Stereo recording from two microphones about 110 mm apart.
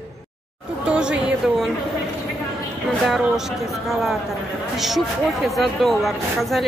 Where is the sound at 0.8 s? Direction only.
10° right (ahead or behind).